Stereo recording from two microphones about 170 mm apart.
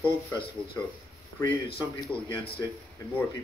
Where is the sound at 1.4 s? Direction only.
30° left (ahead or behind).